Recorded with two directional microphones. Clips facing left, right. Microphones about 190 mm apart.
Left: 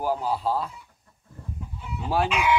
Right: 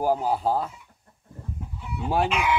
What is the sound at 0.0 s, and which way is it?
Speech, 45° right (ahead or behind).